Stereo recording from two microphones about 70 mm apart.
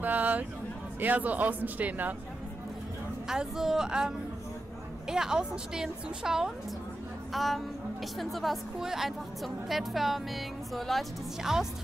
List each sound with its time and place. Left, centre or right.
0.0 s speech: right
3.3 s a woman's voice: centre